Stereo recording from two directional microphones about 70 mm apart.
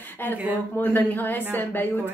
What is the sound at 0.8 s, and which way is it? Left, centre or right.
Speech, left.